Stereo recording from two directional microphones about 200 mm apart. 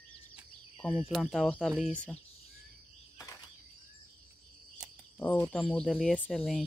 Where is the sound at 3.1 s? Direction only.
15° left (ahead or behind).